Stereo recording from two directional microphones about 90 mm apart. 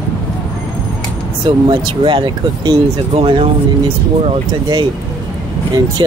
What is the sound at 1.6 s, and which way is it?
Speech, 70° right (ahead or behind).